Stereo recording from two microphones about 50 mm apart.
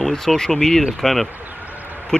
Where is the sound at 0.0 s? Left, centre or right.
Centre.